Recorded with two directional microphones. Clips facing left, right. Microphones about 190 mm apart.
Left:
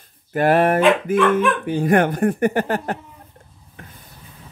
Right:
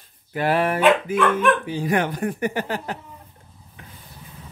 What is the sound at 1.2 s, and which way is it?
Speech, centre (ahead or behind).